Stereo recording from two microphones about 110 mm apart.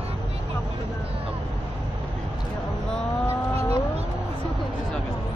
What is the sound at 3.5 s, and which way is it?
Vehicle, 30° left (ahead or behind).